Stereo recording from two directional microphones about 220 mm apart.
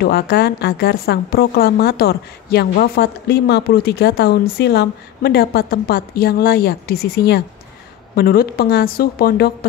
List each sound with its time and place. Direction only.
0.0 s a woman's voice: 45° left (ahead or behind)